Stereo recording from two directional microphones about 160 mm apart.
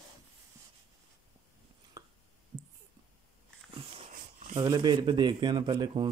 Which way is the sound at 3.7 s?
35° right (ahead or behind).